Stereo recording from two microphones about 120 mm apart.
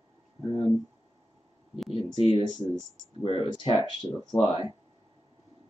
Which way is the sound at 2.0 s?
55° left (ahead or behind).